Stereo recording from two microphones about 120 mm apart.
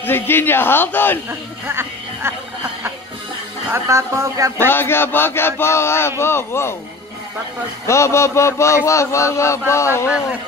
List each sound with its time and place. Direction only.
0.0 s speech: 20° left (ahead or behind)
1.7 s speech: 20° right (ahead or behind)
3.7 s speech: 25° right (ahead or behind)
4.6 s a man's voice: 20° left (ahead or behind)
7.8 s a man's voice: 25° left (ahead or behind)